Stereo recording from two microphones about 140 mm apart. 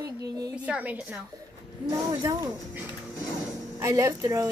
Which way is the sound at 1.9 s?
25° right (ahead or behind).